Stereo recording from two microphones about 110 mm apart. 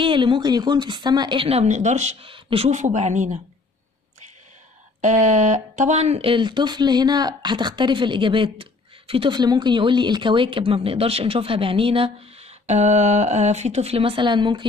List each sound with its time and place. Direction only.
0.0 s speech: 50° right (ahead or behind)
1.4 s speech: 75° right (ahead or behind); by 2.1 s 90° right
2.2 s speech: 55° right (ahead or behind); by 3.3 s 90° right
5.0 s speech: 90° right
6.1 s speech: 50° right (ahead or behind)